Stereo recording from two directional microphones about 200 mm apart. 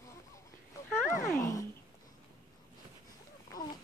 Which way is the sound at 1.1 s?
15° left (ahead or behind).